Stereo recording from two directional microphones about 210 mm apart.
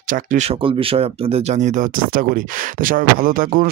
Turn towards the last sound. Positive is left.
turn(degrees=-40)  # may be behind; listen again after turning